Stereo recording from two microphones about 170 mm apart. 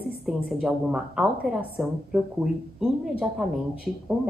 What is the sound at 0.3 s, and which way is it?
Speech, 5° right (ahead or behind).